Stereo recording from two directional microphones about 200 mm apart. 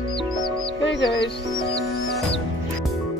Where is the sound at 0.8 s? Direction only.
60° left (ahead or behind).